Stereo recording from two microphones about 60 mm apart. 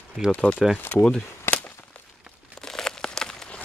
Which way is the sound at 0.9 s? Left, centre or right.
Left.